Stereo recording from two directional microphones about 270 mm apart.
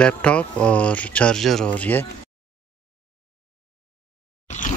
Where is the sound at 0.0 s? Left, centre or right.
Centre.